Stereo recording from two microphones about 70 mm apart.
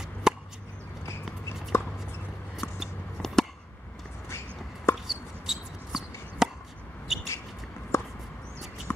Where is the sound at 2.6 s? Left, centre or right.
Centre.